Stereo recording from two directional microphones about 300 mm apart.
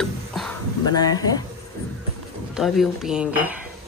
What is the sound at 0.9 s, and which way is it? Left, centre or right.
Speech, centre.